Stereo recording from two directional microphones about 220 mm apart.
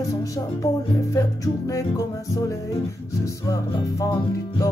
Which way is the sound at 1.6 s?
15° left (ahead or behind).